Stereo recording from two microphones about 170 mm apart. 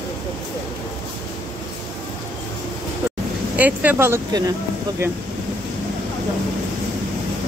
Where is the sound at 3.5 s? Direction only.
10° right (ahead or behind).